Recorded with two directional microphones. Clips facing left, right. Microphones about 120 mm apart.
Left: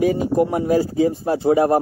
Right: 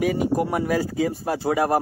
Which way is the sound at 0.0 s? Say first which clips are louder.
Left 4 dB; 30° left (ahead or behind).